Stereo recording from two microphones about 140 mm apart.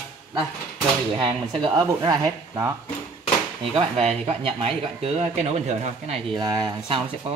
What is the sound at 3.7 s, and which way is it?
Speech, 45° right (ahead or behind).